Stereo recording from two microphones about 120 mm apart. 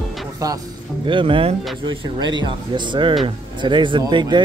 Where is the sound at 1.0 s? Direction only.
45° right (ahead or behind).